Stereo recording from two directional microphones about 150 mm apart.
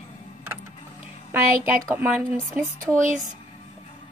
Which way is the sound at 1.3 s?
15° right (ahead or behind).